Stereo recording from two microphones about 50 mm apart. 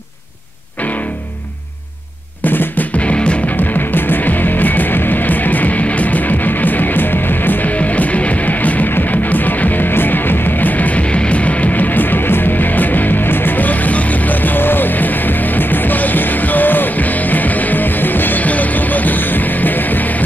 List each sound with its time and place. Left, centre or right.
2.4 s music: left
3.0 s music: left
3.5 s music: left